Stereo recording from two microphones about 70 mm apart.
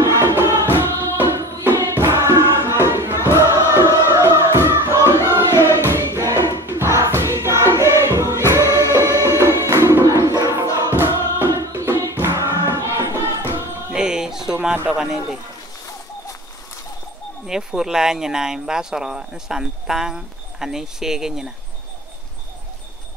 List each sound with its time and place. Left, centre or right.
0.0 s music: right
1.6 s choir: right
3.5 s crowd: right
4.0 s music: right
6.5 s choir: right
8.6 s music: left
9.4 s music: right
10.2 s a sound: right
10.9 s music: right
11.7 s hands: right
12.0 s choir: right
13.9 s a sound: centre
14.9 s speech: centre
17.5 s speech: centre